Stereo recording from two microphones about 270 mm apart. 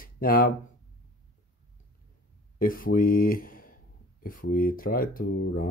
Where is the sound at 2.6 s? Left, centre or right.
Left.